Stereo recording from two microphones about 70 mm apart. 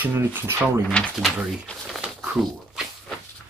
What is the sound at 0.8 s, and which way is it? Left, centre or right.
Speech, centre.